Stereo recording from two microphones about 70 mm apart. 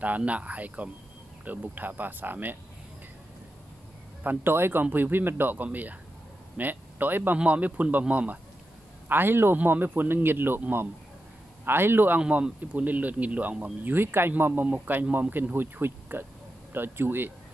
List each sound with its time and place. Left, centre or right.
0.0 s speech: right
4.2 s speech: right
9.1 s a man's voice: right
12.2 s a man's voice: centre; by 17.3 s right